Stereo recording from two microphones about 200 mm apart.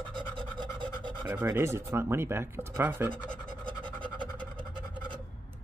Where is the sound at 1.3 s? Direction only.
10° right (ahead or behind).